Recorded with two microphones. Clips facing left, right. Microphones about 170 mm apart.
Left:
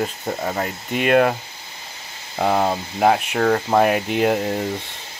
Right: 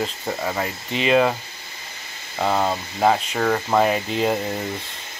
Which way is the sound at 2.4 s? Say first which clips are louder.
Left 2 dB; 45° left (ahead or behind).